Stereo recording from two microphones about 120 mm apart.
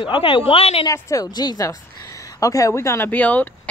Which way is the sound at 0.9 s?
30° left (ahead or behind).